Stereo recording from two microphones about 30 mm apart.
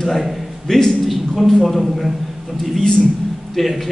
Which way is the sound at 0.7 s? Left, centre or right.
Centre.